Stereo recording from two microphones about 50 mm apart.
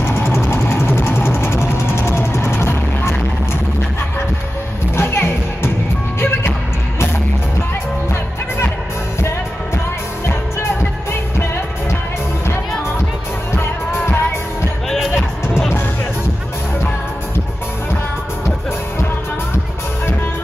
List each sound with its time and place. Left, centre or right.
0.1 s a sound: left
0.5 s vehicle: left
4.9 s music: left